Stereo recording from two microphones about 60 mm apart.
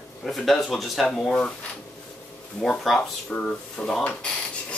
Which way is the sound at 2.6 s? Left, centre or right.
Centre.